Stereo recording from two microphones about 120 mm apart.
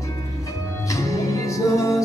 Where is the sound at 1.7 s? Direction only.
25° left (ahead or behind).